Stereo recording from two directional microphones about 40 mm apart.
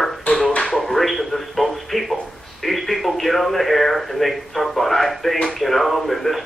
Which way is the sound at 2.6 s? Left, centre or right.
Centre.